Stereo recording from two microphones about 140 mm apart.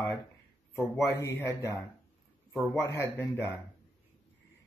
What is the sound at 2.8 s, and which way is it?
Speech, 20° left (ahead or behind).